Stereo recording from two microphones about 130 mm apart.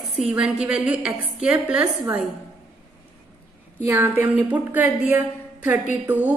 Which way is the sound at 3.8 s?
20° right (ahead or behind).